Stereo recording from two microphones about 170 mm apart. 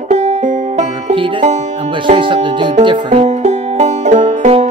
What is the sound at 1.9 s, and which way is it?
Speech, 30° right (ahead or behind).